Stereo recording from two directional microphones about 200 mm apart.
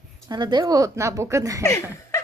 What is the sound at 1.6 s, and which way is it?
Speech, 15° left (ahead or behind).